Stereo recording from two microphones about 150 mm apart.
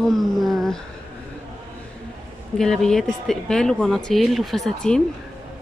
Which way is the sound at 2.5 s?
5° left (ahead or behind).